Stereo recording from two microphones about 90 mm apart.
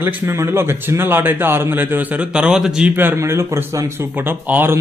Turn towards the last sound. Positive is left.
turn(degrees=-20)  # may be behind; listen again after turning